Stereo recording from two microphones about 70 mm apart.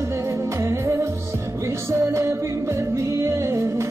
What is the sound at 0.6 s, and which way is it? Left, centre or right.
Music, right.